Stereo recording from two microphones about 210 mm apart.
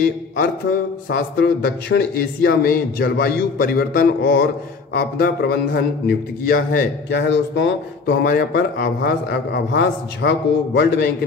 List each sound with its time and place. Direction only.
0.0 s speech: 45° left (ahead or behind)
7.1 s speech: 55° left (ahead or behind)